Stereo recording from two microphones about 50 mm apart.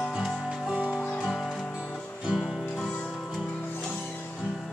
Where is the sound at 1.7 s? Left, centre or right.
Centre.